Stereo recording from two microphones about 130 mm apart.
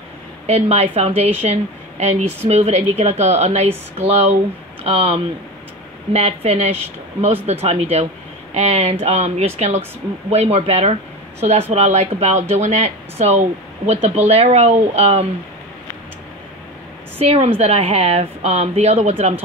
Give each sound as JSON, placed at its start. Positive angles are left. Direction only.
{"t": 0.5, "sound": "a woman's voice", "side_deg": -50}
{"t": 17.2, "sound": "a woman's voice", "side_deg": -55}